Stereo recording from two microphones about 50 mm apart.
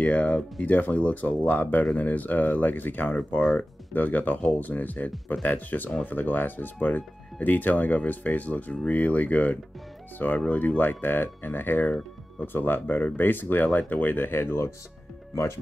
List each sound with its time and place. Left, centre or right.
0.0 s speech: left
13.7 s speech: left
15.3 s speech: left